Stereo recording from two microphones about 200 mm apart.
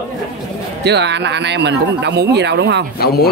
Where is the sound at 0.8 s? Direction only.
60° right (ahead or behind).